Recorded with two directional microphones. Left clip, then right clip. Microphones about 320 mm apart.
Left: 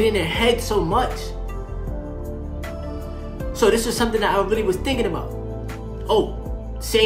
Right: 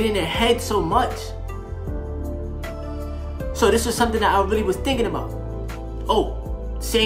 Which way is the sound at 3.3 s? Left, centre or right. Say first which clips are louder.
Even; centre.